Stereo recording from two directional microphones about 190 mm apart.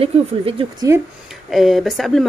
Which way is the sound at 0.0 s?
30° right (ahead or behind).